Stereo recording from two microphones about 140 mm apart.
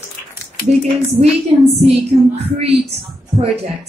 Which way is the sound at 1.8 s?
50° right (ahead or behind).